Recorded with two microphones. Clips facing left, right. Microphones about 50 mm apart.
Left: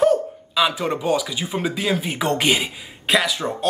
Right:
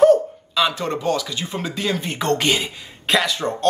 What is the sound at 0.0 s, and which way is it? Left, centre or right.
Speech, centre.